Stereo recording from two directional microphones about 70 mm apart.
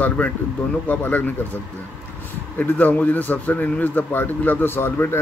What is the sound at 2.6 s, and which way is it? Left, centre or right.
Speech, left.